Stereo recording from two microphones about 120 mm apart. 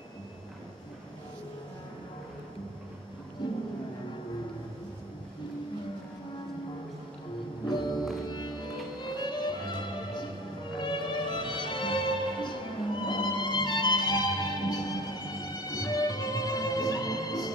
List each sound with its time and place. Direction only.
3.4 s music: 40° left (ahead or behind)
7.9 s music: centre (ahead or behind)
8.3 s music: 35° left (ahead or behind)